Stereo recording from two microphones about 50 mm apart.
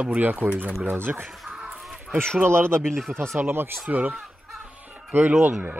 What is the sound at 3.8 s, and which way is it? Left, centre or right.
Speech, right.